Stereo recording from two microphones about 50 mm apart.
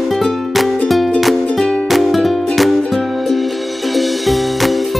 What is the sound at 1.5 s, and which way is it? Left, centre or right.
Music, centre.